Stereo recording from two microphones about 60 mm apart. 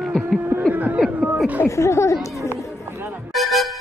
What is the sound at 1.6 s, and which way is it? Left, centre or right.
Speech, left.